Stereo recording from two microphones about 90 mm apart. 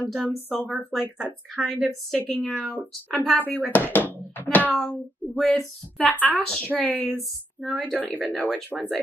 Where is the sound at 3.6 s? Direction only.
20° left (ahead or behind).